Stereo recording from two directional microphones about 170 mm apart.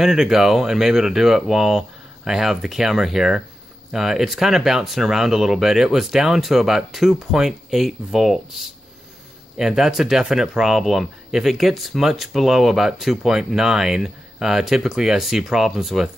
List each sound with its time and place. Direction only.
0.0 s speech: 5° right (ahead or behind)